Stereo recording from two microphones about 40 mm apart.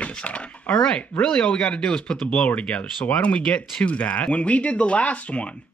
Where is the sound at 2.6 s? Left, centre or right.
Left.